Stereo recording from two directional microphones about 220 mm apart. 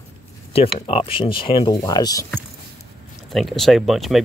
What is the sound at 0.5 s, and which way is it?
Speech, 25° left (ahead or behind).